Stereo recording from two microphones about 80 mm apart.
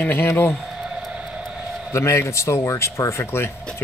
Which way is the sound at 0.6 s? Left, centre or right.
Centre.